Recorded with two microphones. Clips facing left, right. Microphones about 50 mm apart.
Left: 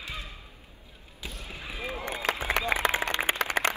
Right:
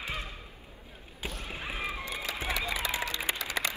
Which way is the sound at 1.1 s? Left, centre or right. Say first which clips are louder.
Right 2 dB; right.